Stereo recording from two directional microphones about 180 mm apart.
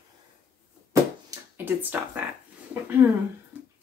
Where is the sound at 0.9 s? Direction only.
15° right (ahead or behind).